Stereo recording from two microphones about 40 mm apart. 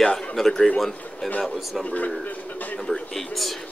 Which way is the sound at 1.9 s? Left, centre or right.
Left.